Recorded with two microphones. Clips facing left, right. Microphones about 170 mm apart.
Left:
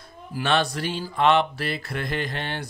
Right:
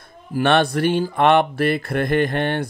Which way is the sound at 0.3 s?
55° right (ahead or behind).